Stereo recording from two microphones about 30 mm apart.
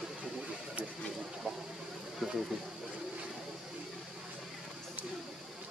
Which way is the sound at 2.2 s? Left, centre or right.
Centre.